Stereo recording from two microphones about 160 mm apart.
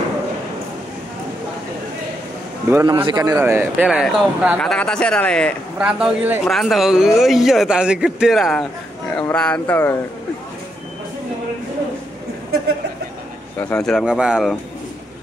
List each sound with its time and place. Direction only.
2.7 s a man's voice: 25° right (ahead or behind)
3.3 s a man's voice: 10° right (ahead or behind); by 5.6 s 5° left (ahead or behind)
5.8 s a man's voice: 5° right (ahead or behind); by 9.9 s 10° left (ahead or behind)
13.6 s a man's voice: 10° left (ahead or behind)